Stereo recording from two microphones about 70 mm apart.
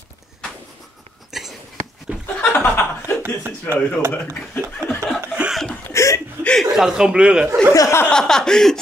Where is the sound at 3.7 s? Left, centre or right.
Left.